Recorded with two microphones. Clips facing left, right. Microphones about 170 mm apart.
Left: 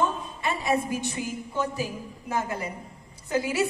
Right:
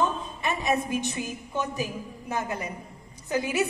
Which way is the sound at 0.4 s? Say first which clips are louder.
Left 1 dB; 20° right (ahead or behind).